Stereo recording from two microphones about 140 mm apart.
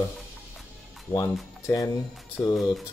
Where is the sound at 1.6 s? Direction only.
25° left (ahead or behind).